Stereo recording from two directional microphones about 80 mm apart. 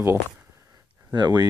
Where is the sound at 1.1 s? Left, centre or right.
Right.